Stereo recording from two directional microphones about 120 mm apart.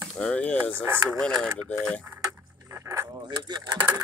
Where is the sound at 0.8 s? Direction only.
15° right (ahead or behind).